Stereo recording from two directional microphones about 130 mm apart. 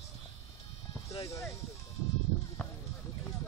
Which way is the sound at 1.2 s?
20° left (ahead or behind).